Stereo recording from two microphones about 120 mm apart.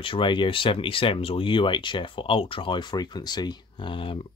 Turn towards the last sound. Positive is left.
turn(degrees=45)  # may be behind; listen again after turning